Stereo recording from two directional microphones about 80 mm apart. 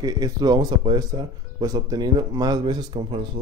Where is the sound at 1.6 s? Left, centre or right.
Right.